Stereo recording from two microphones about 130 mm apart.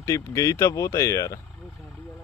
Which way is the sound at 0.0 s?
20° left (ahead or behind).